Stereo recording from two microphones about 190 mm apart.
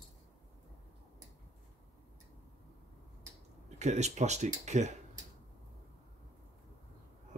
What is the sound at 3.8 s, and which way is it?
Speech, 35° right (ahead or behind).